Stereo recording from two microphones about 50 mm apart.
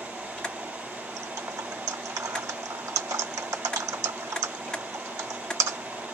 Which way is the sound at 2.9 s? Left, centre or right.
Right.